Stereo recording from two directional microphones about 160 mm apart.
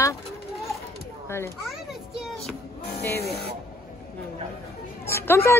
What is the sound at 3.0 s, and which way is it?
Speech, 15° left (ahead or behind).